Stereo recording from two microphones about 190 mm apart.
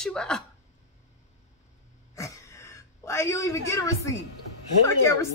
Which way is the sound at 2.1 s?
15° left (ahead or behind).